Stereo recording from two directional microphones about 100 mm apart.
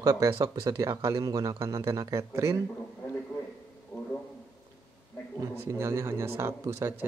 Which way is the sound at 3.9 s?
20° left (ahead or behind).